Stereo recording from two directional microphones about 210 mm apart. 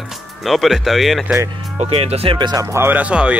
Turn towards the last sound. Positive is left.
turn(degrees=-5)  # may be behind; listen again after turning